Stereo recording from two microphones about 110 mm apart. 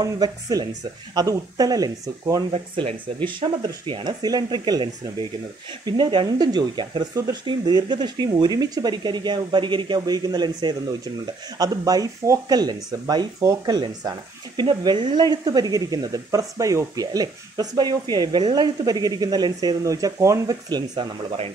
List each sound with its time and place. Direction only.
0.0 s speech: 35° right (ahead or behind)
2.5 s speech: 60° right (ahead or behind)
3.3 s speech: 45° right (ahead or behind)
5.9 s speech: 45° right (ahead or behind)